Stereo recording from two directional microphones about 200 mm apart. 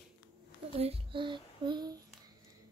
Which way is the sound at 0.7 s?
30° right (ahead or behind).